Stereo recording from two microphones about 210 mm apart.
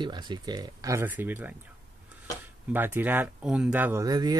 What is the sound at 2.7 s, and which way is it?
Speech, 10° right (ahead or behind).